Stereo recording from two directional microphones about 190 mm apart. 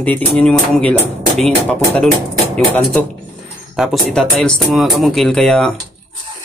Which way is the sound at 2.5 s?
5° left (ahead or behind).